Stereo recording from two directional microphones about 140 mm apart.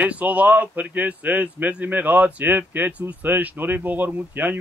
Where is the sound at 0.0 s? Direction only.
10° right (ahead or behind).